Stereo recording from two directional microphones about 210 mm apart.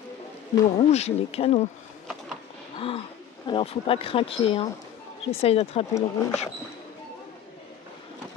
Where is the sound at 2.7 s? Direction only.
25° left (ahead or behind).